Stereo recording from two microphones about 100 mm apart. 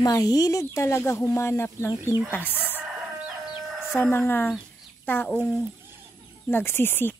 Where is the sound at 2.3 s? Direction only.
20° left (ahead or behind).